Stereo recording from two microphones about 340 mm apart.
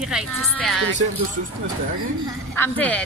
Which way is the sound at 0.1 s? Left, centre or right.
Centre.